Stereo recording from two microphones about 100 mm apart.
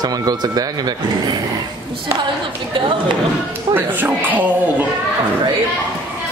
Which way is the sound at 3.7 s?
20° right (ahead or behind).